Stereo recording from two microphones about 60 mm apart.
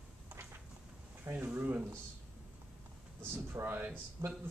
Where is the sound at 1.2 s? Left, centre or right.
Right.